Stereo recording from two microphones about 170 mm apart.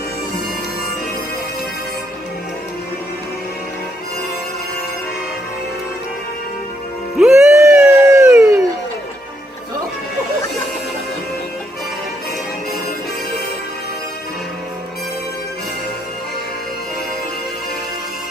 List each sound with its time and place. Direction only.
7.2 s music: 5° right (ahead or behind)
7.5 s a sound: 15° right (ahead or behind)
8.3 s music: 15° right (ahead or behind)